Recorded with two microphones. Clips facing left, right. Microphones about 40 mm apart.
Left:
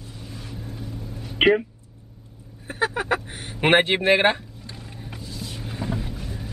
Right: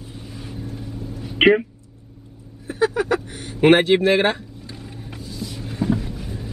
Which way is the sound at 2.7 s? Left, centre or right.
Left.